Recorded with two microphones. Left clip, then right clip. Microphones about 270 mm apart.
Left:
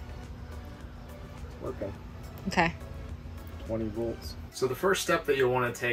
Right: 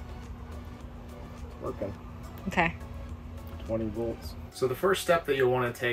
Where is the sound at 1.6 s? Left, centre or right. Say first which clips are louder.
Right 1 dB; centre.